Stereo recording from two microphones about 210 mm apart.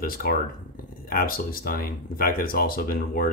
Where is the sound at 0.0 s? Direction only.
45° left (ahead or behind).